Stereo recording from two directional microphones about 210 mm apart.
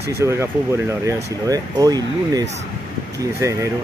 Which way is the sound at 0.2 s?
15° right (ahead or behind).